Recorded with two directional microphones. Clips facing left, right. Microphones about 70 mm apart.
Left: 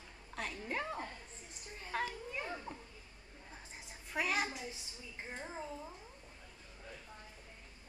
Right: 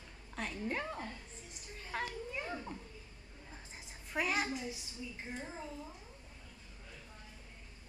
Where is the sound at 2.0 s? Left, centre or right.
Centre.